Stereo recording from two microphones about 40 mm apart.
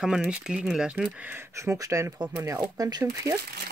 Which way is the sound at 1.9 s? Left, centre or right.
Right.